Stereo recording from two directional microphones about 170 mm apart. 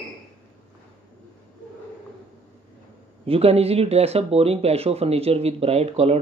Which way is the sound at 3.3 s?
35° right (ahead or behind).